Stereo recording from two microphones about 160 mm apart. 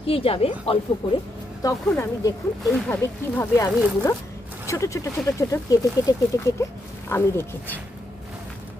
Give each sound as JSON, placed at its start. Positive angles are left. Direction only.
{"t": 0.0, "sound": "a woman's voice", "side_deg": 35}
{"t": 1.6, "sound": "speech", "side_deg": 20}